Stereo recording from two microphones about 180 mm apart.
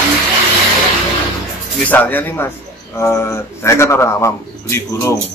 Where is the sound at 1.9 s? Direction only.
10° left (ahead or behind).